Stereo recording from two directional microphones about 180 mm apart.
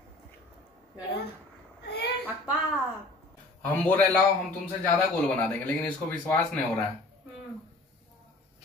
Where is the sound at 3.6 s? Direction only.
10° left (ahead or behind).